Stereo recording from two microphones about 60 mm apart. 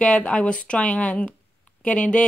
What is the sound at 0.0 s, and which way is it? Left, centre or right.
Speech, centre.